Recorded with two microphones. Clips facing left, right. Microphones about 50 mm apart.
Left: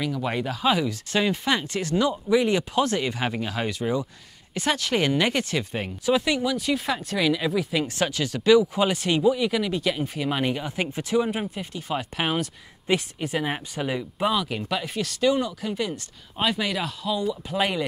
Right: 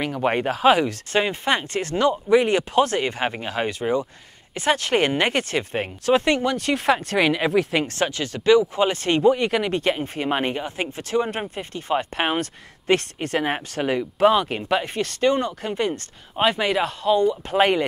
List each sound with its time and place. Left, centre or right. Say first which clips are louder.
0.0 s speech: right 5 dB; right
1.1 s speech: right 2 dB; right
3.3 s speech: right 2 dB; right
8.0 s speech: right 1 dB; right
8.9 s speech: right 5 dB; right
9.9 s speech: right 2 dB; right
11.1 s speech: right 1 dB; centre
11.6 s speech: right 5 dB; right
12.4 s speech: right 2 dB; right
13.7 s speech: right 8 dB; right
16.3 s speech: right 5 dB; right